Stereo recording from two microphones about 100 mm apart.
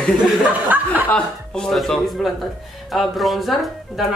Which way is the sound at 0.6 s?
15° right (ahead or behind).